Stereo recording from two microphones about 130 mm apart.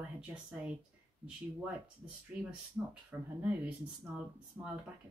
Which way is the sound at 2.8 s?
10° right (ahead or behind).